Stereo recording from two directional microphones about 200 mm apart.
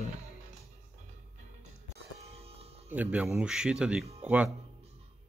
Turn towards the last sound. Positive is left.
turn(degrees=-5)  # may be behind; listen again after turning